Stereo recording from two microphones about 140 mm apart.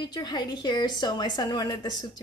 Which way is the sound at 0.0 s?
30° left (ahead or behind).